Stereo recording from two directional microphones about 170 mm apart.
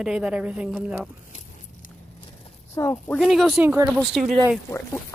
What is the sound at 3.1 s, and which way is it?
Speech, centre (ahead or behind).